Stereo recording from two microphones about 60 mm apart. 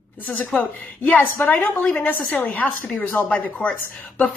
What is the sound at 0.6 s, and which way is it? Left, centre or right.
A woman's voice, left.